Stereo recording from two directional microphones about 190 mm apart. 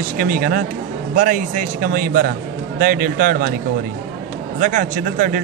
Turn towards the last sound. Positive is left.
turn(degrees=-45)  # may be behind; listen again after turning